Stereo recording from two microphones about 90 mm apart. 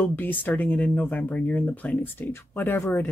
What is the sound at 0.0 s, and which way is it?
Speech, 20° left (ahead or behind).